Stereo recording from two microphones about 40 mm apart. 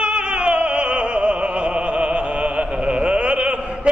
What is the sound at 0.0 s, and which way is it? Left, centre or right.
Opera, right.